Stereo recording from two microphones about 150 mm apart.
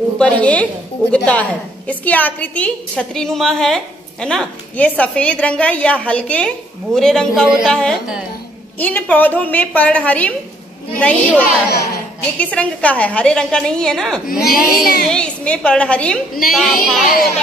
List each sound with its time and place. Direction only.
0.2 s a woman's voice: 10° left (ahead or behind)
11.3 s a child's voice: 20° left (ahead or behind)
12.4 s a woman's voice: 10° left (ahead or behind)
14.3 s speech: 75° left (ahead or behind)
15.0 s a woman's voice: 5° left (ahead or behind)